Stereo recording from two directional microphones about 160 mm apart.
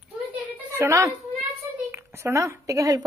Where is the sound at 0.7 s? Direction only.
20° right (ahead or behind).